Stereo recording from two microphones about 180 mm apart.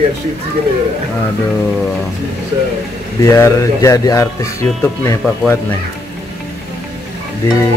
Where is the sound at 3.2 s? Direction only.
15° left (ahead or behind).